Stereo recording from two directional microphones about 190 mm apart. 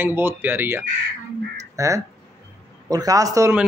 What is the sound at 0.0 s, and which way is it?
Speech, 10° right (ahead or behind).